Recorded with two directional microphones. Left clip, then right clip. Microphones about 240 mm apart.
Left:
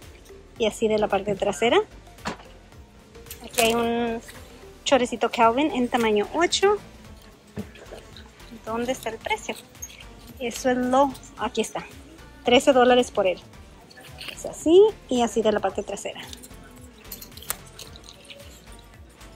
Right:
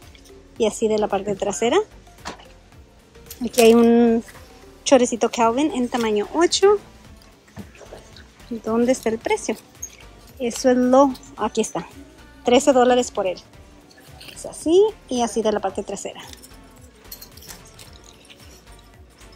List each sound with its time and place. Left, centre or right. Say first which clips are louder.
0.6 s speech: right 3 dB; centre
3.6 s a woman's voice: right 9 dB; right
8.6 s a woman's voice: right 8 dB; right
14.5 s speech: even; centre